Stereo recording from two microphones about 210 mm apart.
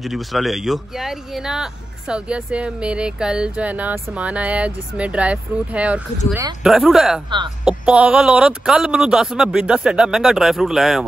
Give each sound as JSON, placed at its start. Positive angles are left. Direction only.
{"t": 0.0, "sound": "speech", "side_deg": 0}
{"t": 7.2, "sound": "speech", "side_deg": -20}
{"t": 7.6, "sound": "speech", "side_deg": -5}